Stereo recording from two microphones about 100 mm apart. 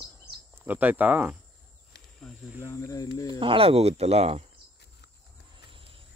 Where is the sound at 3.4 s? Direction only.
65° right (ahead or behind); by 4.4 s 90° right.